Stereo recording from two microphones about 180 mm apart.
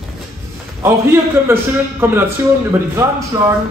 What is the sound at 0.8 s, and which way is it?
A man's voice, 15° right (ahead or behind).